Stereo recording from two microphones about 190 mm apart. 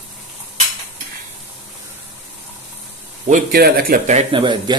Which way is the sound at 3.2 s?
45° right (ahead or behind).